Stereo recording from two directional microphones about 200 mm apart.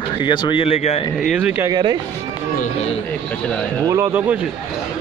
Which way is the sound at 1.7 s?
20° right (ahead or behind).